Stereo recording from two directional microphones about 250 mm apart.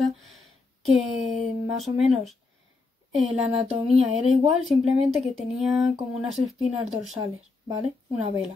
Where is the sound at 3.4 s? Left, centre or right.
Right.